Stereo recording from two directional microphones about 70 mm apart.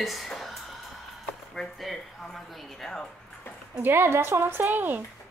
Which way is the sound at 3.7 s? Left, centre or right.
Right.